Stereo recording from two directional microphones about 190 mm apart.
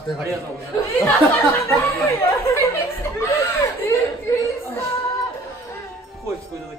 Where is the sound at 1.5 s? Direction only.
15° left (ahead or behind).